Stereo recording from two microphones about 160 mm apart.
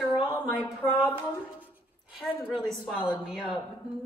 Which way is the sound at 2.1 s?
Centre (ahead or behind).